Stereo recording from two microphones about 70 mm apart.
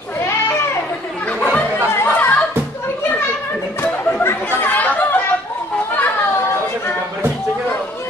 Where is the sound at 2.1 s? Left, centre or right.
Left.